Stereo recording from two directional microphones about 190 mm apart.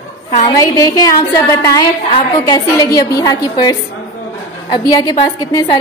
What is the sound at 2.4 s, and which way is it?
A woman's voice, 20° left (ahead or behind).